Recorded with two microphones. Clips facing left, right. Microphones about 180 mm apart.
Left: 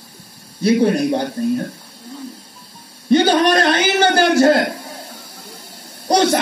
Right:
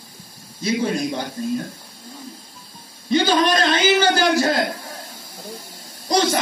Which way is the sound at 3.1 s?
60° left (ahead or behind).